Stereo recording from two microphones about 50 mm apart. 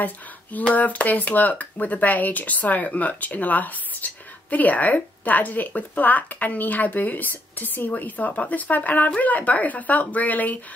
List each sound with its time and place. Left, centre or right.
0.0 s speech: left